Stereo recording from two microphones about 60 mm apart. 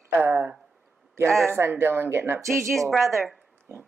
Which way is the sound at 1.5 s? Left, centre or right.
Right.